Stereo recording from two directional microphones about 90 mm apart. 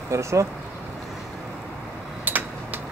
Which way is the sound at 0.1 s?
35° right (ahead or behind).